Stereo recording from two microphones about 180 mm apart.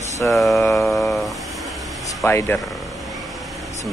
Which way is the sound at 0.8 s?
Centre (ahead or behind).